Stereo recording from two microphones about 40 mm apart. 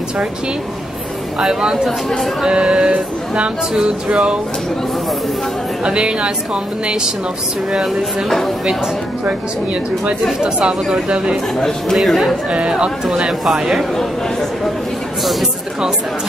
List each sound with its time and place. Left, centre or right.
1.4 s speech: centre
5.9 s speech: right
10.4 s speech: centre
11.6 s speech: centre
12.4 s speech: right
13.5 s speech: centre